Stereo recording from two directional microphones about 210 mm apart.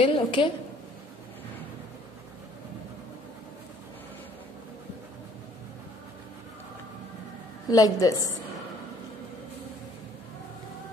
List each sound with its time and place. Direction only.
0.0 s a woman's voice: 25° left (ahead or behind)
7.7 s a woman's voice: 15° left (ahead or behind)